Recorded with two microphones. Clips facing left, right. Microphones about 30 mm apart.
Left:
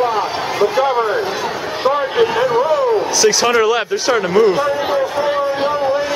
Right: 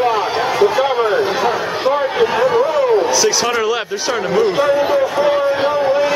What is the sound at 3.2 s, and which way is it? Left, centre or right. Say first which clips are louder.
Speech: left 3 dB; centre.